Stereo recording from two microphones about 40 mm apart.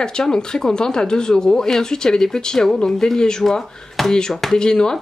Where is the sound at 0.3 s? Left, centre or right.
Centre.